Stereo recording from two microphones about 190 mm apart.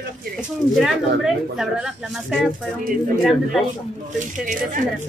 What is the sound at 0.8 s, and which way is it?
Speech, centre (ahead or behind).